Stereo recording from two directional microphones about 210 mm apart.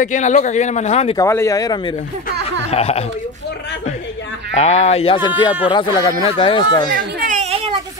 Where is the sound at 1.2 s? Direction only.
15° left (ahead or behind).